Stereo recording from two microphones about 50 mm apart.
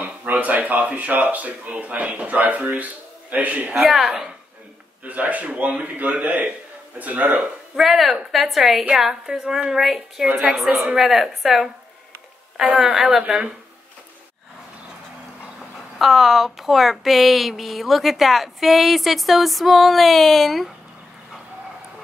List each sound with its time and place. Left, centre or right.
0.0 s speech: right
3.8 s a woman's voice: centre
5.0 s a man's voice: right
7.7 s a woman's voice: centre
12.7 s a woman's voice: centre
16.0 s speech: centre